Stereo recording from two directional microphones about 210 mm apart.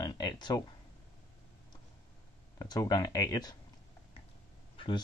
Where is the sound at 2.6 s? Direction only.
15° left (ahead or behind).